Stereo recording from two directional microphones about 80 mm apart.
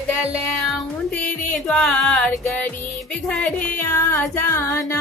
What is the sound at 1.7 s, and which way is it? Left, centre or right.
Music, centre.